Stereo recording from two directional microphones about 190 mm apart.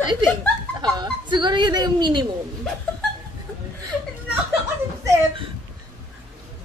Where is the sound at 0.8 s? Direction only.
25° right (ahead or behind).